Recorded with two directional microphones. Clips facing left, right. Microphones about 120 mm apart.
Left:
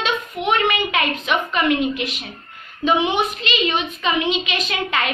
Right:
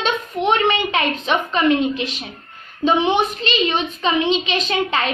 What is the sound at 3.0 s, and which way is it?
A woman's voice, 35° right (ahead or behind).